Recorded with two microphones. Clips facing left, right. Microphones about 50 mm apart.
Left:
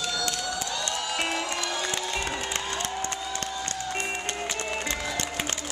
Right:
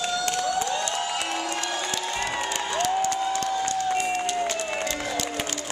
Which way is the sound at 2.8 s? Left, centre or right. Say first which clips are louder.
Right 8 dB; left.